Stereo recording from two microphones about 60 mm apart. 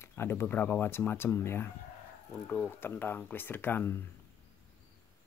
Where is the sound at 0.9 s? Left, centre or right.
Left.